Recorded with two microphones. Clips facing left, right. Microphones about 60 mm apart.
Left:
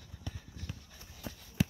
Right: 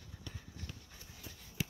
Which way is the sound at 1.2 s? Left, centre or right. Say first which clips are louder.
Left 9 dB; left.